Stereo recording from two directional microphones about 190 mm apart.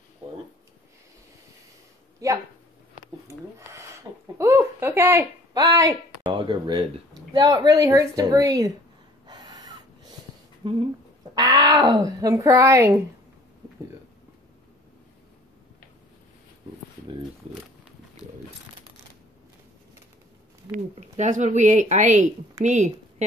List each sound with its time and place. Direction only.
2.2 s speech: 15° right (ahead or behind)
3.3 s a sound: 15° right (ahead or behind)
7.3 s a woman's voice: 20° right (ahead or behind)
9.3 s snort: 20° right (ahead or behind)
10.6 s a woman's voice: 25° right (ahead or behind)
20.7 s speech: 35° right (ahead or behind)